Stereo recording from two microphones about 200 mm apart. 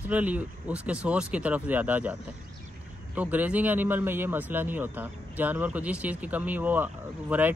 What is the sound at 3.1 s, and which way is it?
A man's voice, 10° right (ahead or behind).